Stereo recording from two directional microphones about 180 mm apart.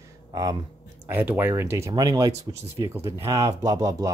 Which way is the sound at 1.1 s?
10° right (ahead or behind).